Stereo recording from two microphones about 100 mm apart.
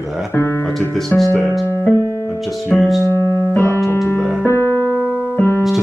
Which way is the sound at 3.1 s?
20° left (ahead or behind).